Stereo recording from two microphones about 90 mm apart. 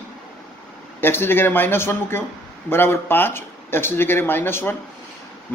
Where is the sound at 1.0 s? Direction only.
25° left (ahead or behind).